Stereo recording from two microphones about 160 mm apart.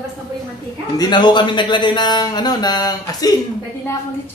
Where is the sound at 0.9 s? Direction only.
30° left (ahead or behind).